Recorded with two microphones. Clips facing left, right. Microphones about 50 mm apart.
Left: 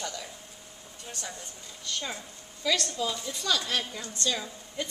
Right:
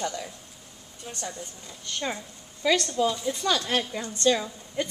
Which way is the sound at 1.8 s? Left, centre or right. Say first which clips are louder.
Right 4 dB; right.